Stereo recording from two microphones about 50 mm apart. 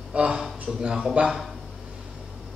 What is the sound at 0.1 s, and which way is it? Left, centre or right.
Speech, right.